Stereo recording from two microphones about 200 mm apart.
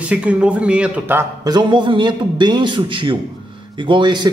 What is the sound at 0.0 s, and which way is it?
A man's voice, 5° right (ahead or behind).